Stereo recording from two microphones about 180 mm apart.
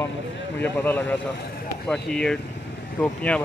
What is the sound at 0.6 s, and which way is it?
Speech, 10° left (ahead or behind).